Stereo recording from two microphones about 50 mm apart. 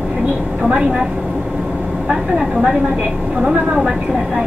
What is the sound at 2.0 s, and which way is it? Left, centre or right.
A woman's voice, centre.